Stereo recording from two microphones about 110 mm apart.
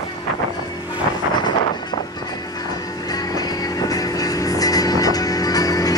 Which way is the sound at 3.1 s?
35° left (ahead or behind).